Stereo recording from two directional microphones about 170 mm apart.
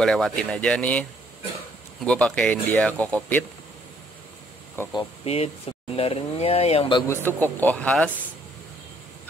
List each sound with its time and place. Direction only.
0.0 s speech: 5° left (ahead or behind)
2.0 s speech: 5° left (ahead or behind)
4.9 s speech: 35° left (ahead or behind)
7.1 s speech: 10° left (ahead or behind)